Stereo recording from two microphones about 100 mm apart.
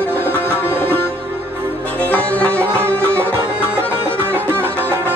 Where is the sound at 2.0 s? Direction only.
15° left (ahead or behind).